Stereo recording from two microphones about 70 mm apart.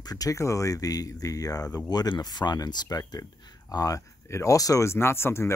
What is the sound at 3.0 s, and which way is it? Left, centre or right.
Speech, left.